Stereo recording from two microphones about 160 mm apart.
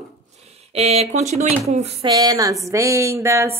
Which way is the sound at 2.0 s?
25° right (ahead or behind).